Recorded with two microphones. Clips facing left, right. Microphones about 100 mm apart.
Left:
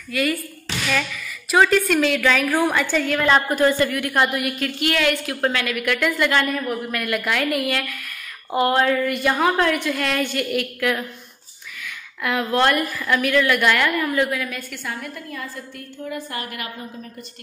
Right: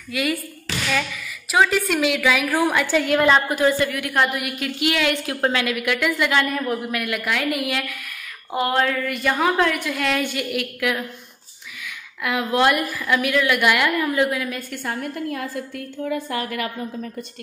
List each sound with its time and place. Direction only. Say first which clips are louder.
0.1 s a woman's voice: left 1 dB; 15° right (ahead or behind)
1.5 s a woman's voice: left 2 dB; 10° right (ahead or behind)
5.9 s a woman's voice: left 1 dB; 5° right (ahead or behind)
6.6 s a woman's voice: right 1 dB; 20° right (ahead or behind)
6.9 s a woman's voice: left 1 dB; 5° right (ahead or behind)
12.2 s a woman's voice: even; 10° right (ahead or behind)
14.7 s a woman's voice: right 3 dB; 40° right (ahead or behind)
15.2 s a woman's voice: right 6 dB; 80° right